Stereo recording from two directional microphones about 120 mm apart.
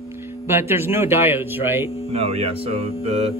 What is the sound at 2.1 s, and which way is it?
Speech, 60° right (ahead or behind).